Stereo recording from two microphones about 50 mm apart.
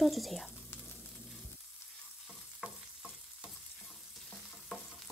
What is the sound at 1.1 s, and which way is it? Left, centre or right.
Frying, centre.